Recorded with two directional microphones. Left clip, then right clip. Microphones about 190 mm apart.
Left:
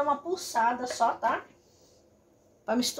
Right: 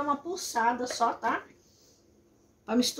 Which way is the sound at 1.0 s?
20° left (ahead or behind).